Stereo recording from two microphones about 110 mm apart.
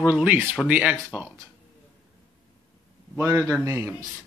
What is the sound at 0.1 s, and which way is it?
Speech, 10° right (ahead or behind).